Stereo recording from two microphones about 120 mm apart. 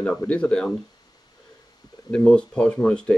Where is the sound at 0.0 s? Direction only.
10° left (ahead or behind).